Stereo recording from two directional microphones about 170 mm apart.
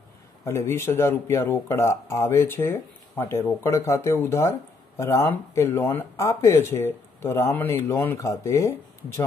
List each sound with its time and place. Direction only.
0.5 s speech: 15° left (ahead or behind)